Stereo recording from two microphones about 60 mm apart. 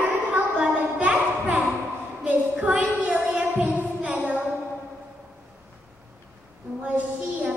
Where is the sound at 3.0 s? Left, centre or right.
Right.